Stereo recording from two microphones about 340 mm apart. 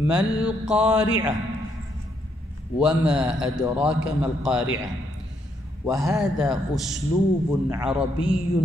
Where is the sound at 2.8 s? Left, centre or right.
Centre.